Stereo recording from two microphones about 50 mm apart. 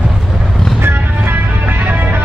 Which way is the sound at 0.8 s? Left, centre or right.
Right.